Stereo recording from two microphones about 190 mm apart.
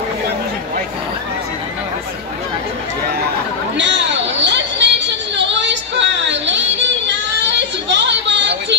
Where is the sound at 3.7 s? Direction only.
70° right (ahead or behind).